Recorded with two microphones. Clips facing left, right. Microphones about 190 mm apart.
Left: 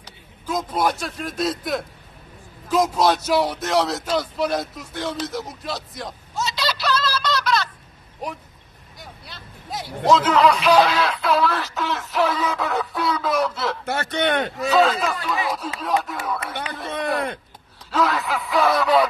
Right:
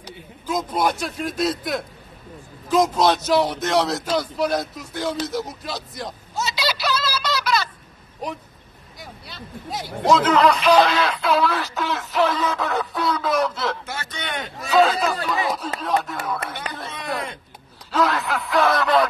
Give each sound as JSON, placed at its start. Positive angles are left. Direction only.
{"t": 0.5, "sound": "speech", "side_deg": 0}
{"t": 9.0, "sound": "speech", "side_deg": 0}
{"t": 13.8, "sound": "a man's voice", "side_deg": 60}
{"t": 14.7, "sound": "speech", "side_deg": 0}
{"t": 17.9, "sound": "speech", "side_deg": 0}